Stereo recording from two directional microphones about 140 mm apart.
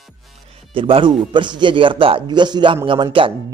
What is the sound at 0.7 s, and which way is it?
Speech, 40° right (ahead or behind).